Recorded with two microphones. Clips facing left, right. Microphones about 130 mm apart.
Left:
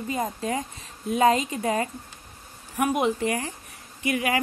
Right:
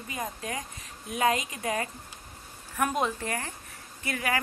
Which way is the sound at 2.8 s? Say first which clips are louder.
Left 5 dB; 15° left (ahead or behind).